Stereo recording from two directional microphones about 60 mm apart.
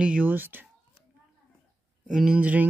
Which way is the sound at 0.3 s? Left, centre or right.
Right.